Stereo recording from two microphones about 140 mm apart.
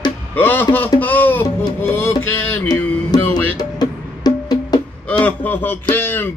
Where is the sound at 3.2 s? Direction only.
10° left (ahead or behind).